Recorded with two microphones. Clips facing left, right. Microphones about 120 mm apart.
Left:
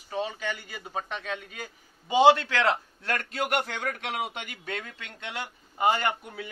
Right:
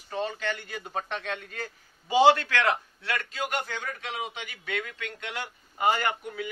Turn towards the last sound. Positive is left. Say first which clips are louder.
# even
turn(degrees=25)  # may be behind; listen again after turning